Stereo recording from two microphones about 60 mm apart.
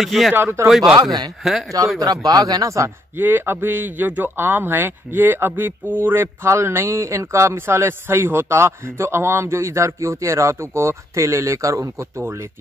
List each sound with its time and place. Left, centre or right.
0.0 s speech: centre
0.3 s a man's voice: right
0.7 s speech: centre
2.0 s speech: right
3.2 s a man's voice: right
6.2 s a man's voice: right
12.2 s a man's voice: right